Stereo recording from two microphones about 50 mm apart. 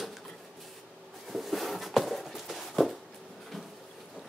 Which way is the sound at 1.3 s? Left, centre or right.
Centre.